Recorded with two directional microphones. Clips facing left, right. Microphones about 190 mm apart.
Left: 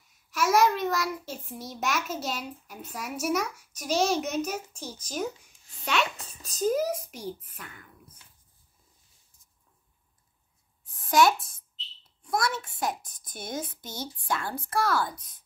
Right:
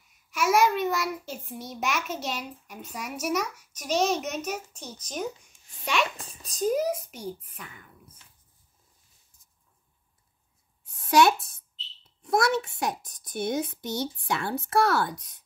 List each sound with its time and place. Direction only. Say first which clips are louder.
0.3 s a child's voice: even; centre (ahead or behind)
10.9 s a sound: right 2 dB; 70° right (ahead or behind)
12.2 s speech: right 5 dB; 65° right (ahead or behind)